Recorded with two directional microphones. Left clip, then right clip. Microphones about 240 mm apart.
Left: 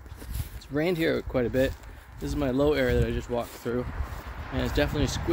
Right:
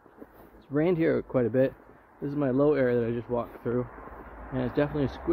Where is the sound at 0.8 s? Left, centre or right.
Centre.